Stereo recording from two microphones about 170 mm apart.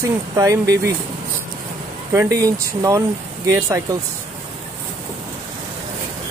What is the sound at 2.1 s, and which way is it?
Speech, 15° right (ahead or behind).